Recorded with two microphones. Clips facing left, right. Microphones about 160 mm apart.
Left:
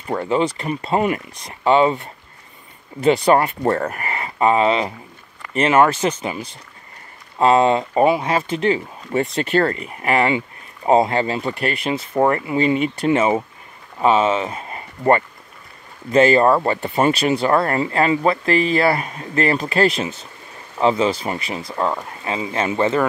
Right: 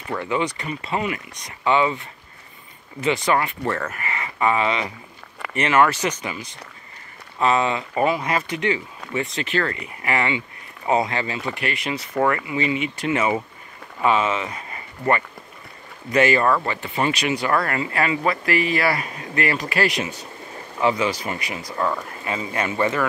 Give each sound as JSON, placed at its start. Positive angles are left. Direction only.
{"t": 0.1, "sound": "speech", "side_deg": 30}
{"t": 0.7, "sound": "speech", "side_deg": 45}
{"t": 1.3, "sound": "speech", "side_deg": 30}
{"t": 3.0, "sound": "speech", "side_deg": 40}
{"t": 7.3, "sound": "speech", "side_deg": 35}
{"t": 9.1, "sound": "speech", "side_deg": 40}
{"t": 10.9, "sound": "speech", "side_deg": 30}
{"t": 16.1, "sound": "speech", "side_deg": 30}
{"t": 16.7, "sound": "speech", "side_deg": 40}